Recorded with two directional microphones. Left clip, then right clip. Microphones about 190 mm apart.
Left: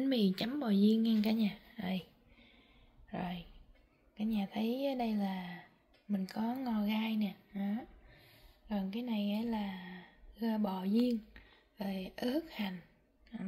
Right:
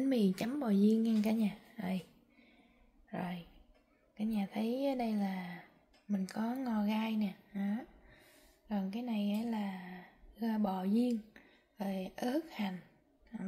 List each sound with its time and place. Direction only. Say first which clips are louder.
0.0 s a woman's voice: even; 5° right (ahead or behind)